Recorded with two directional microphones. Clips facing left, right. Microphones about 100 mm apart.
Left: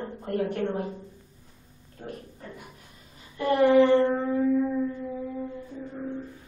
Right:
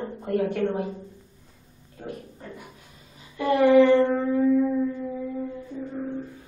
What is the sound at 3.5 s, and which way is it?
Child singing, 30° left (ahead or behind).